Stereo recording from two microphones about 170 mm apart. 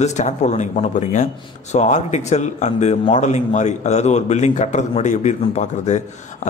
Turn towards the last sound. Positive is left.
turn(degrees=45)  # may be behind; listen again after turning